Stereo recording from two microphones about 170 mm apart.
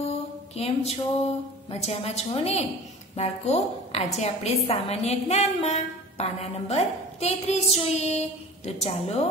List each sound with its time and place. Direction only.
0.6 s a woman's voice: 35° left (ahead or behind)